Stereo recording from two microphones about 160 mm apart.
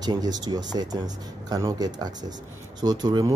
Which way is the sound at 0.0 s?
25° right (ahead or behind).